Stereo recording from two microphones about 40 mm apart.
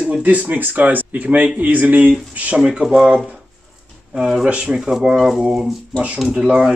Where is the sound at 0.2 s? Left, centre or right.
Right.